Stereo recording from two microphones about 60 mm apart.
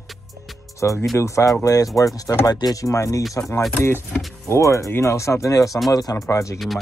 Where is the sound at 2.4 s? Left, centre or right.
Left.